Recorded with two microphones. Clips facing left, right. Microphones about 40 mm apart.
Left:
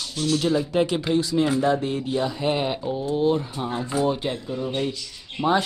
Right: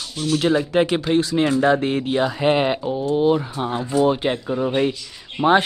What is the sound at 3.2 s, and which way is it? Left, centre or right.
Speech, right.